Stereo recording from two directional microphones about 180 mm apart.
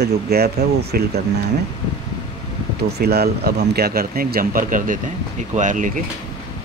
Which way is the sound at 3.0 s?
60° right (ahead or behind).